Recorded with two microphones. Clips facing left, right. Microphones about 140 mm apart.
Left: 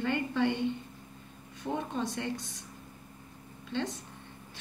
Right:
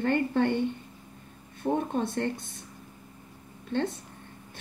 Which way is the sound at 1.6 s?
50° right (ahead or behind).